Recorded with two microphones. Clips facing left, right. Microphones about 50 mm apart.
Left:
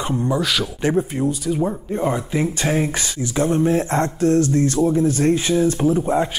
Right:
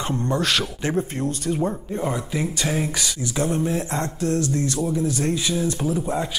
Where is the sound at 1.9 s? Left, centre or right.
Centre.